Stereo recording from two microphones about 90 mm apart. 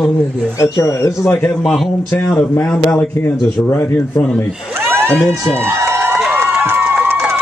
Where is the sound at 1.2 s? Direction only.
25° left (ahead or behind).